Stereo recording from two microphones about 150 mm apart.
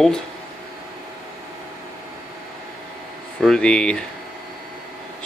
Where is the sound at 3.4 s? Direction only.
5° left (ahead or behind).